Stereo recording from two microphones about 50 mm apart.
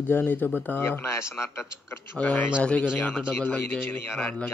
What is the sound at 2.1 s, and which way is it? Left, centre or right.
Speech, left.